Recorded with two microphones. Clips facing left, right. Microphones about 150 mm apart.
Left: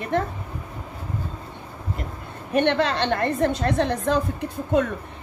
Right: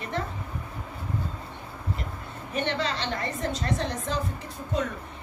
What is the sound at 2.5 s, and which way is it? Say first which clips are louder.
A woman's voice: left 8 dB; 60° left (ahead or behind).